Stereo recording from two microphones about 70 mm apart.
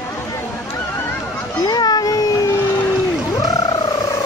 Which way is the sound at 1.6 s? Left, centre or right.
Left.